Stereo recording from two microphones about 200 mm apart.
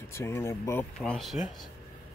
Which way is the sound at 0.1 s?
15° left (ahead or behind).